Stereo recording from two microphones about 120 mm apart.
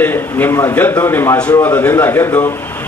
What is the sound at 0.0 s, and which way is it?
A man's voice, 15° left (ahead or behind).